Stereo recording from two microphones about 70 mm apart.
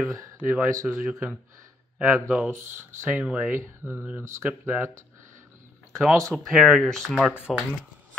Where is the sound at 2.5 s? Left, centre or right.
Right.